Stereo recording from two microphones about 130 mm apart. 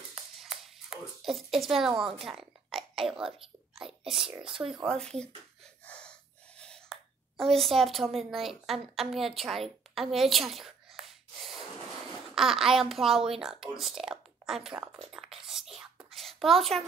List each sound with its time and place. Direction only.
0.1 s a sound: 5° right (ahead or behind)
1.2 s a child's voice: centre (ahead or behind)
4.4 s speech: 45° right (ahead or behind)
4.8 s speech: 5° left (ahead or behind)
5.9 s gasp: 10° left (ahead or behind)
6.6 s speech: 5° left (ahead or behind)
15.7 s a sound: centre (ahead or behind)